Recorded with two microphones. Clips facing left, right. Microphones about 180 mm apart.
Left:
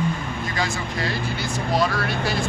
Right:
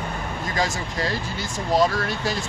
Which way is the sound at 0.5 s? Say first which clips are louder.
Right 2 dB; 40° right (ahead or behind).